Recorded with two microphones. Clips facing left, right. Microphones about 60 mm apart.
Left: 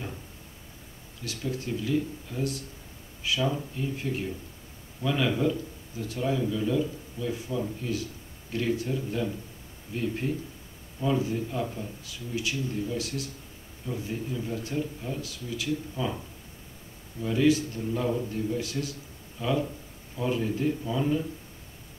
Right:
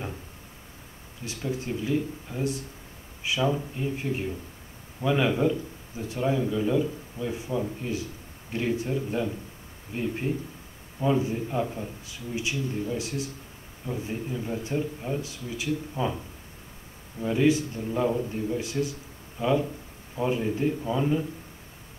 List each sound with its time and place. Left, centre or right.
1.2 s a man's voice: right
17.2 s a man's voice: right